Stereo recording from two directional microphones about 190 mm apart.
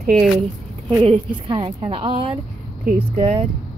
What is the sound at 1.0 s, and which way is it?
A woman's voice, 30° right (ahead or behind).